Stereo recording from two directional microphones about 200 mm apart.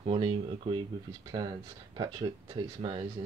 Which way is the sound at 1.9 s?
20° right (ahead or behind).